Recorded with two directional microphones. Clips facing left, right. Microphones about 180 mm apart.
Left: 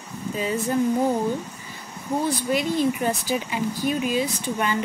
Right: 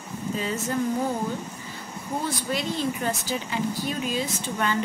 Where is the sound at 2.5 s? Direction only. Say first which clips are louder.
Left 6 dB; 15° left (ahead or behind).